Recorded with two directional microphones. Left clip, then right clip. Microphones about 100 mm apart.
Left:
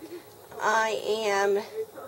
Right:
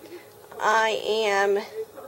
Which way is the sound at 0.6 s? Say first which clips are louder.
Right 3 dB; 10° right (ahead or behind).